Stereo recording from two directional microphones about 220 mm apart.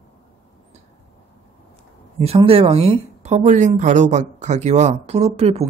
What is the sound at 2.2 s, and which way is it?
A woman's voice, 25° right (ahead or behind).